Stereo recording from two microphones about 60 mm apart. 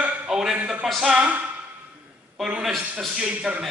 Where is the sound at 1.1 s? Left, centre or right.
Right.